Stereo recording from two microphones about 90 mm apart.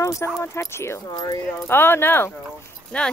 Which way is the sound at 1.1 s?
45° left (ahead or behind).